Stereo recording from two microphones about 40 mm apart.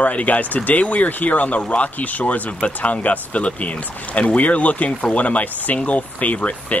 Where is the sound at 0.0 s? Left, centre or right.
Left.